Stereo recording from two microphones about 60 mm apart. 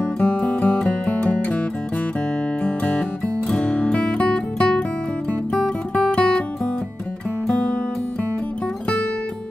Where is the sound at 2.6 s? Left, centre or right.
Left.